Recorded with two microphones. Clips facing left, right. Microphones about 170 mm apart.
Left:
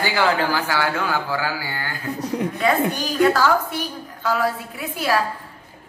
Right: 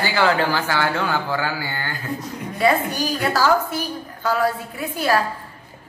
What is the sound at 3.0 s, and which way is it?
A woman's voice, 5° right (ahead or behind).